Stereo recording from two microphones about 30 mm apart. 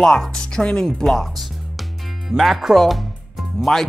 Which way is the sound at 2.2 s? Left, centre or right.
Centre.